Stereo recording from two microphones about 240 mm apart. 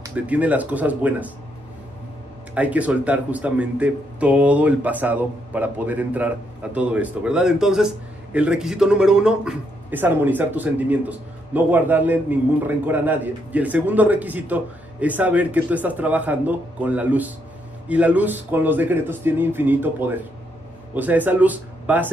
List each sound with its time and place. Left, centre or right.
0.0 s speech: centre
2.5 s speech: centre